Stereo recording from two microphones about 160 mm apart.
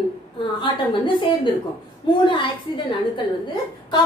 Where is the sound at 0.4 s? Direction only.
30° left (ahead or behind).